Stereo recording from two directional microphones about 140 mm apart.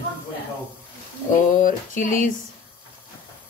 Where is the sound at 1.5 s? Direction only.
70° left (ahead or behind).